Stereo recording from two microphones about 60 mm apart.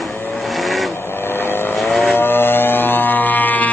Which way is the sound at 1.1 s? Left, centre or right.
Left.